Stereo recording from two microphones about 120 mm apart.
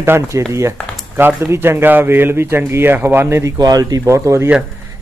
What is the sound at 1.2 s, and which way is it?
Speech, 20° right (ahead or behind).